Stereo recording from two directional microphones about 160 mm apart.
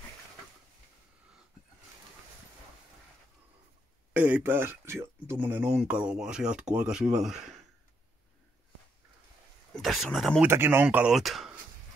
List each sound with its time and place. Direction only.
4.1 s speech: 10° right (ahead or behind)
9.8 s a sound: centre (ahead or behind)
10.1 s speech: centre (ahead or behind)
10.4 s speech: 15° right (ahead or behind)